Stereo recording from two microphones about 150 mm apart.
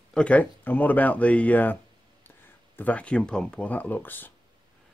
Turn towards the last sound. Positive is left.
turn(degrees=15)  # may be behind; listen again after turning